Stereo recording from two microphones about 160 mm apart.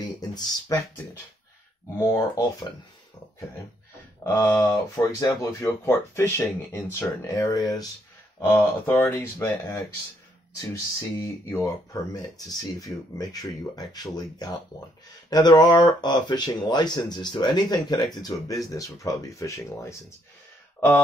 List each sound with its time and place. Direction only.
0.0 s speech: 25° left (ahead or behind)
2.0 s speech: 20° left (ahead or behind)
4.2 s speech: 20° left (ahead or behind)
7.2 s speech: 25° left (ahead or behind)
8.4 s speech: 15° left (ahead or behind)